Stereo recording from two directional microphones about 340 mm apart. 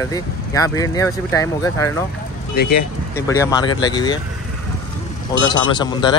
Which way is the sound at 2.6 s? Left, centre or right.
Left.